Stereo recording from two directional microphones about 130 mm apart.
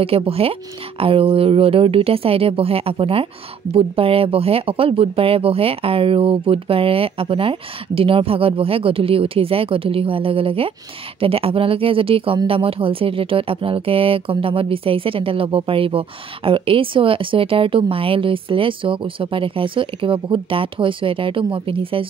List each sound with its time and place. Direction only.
0.0 s speech: 45° right (ahead or behind)